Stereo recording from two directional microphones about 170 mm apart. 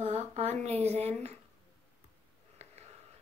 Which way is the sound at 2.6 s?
40° right (ahead or behind).